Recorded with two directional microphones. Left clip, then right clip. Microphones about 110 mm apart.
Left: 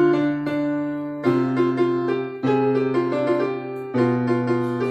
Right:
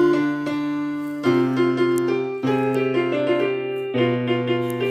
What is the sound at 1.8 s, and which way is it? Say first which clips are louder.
Music: right 1 dB; 30° right (ahead or behind).